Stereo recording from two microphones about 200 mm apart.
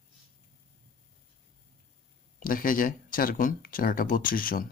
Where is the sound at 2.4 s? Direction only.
45° left (ahead or behind).